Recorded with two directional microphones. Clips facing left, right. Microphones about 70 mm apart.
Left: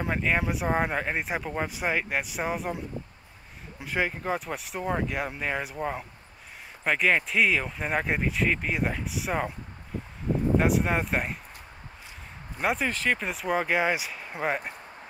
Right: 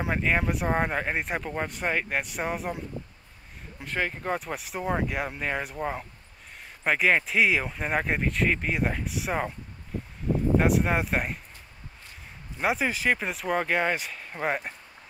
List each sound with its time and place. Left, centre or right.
0.0 s speech: centre
3.8 s speech: centre
10.6 s speech: centre
12.5 s speech: centre